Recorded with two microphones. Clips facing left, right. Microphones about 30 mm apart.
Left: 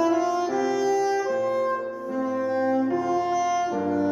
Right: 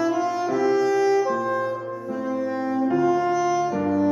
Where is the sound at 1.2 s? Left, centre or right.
Centre.